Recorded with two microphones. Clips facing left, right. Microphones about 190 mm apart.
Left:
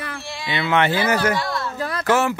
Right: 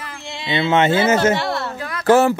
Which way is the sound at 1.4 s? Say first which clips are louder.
Right 3 dB; 65° right (ahead or behind).